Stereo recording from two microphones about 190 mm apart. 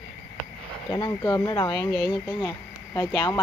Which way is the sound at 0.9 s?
20° left (ahead or behind).